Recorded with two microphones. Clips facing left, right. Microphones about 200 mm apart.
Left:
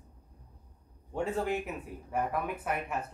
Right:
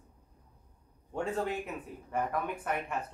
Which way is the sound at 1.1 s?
5° left (ahead or behind).